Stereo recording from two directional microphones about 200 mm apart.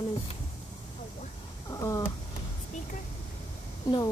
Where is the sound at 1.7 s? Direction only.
15° left (ahead or behind).